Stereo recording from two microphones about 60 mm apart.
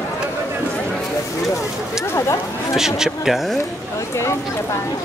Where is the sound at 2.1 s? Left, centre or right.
Left.